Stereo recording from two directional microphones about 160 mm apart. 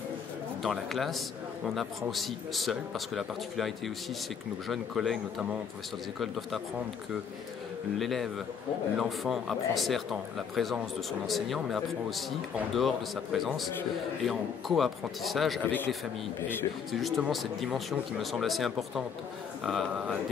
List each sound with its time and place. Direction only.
0.6 s a man's voice: centre (ahead or behind)
8.0 s a man's voice: centre (ahead or behind)
16.9 s a man's voice: centre (ahead or behind)